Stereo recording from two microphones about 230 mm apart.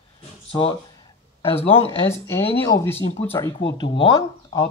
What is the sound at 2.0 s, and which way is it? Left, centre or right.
Speech, centre.